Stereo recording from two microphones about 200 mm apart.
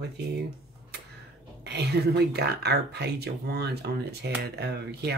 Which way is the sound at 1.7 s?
55° right (ahead or behind).